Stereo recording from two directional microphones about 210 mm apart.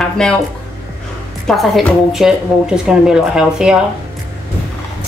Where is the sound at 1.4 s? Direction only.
Centre (ahead or behind).